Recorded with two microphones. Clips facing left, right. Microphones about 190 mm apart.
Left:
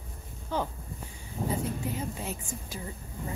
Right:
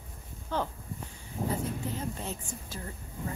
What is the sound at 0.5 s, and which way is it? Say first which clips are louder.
A woman's voice: left 1 dB; 15° left (ahead or behind).